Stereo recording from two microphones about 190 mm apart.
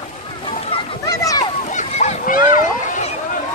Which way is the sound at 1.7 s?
40° left (ahead or behind).